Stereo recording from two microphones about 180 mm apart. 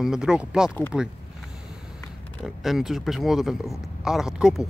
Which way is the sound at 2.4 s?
Centre (ahead or behind).